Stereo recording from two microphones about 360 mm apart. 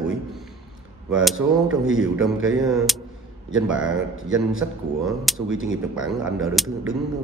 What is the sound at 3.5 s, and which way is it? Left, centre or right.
Speech, right.